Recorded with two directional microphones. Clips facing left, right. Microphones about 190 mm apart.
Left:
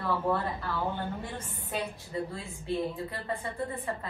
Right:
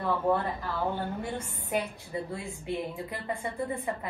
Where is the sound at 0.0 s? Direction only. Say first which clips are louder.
Right 2 dB; 15° right (ahead or behind).